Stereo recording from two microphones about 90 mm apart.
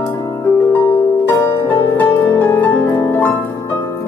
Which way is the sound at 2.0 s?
20° left (ahead or behind).